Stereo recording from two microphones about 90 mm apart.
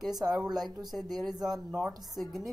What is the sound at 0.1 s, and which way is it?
Speech, 45° right (ahead or behind).